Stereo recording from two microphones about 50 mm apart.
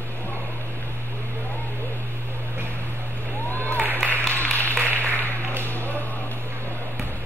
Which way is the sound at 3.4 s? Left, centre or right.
Left.